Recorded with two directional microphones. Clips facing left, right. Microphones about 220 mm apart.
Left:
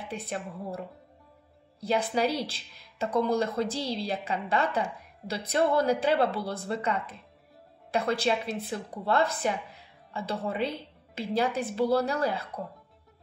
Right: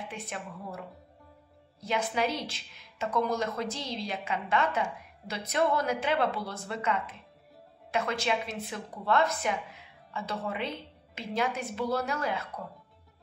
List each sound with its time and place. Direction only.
0.1 s a woman's voice: 35° left (ahead or behind)
1.8 s a woman's voice: 35° left (ahead or behind)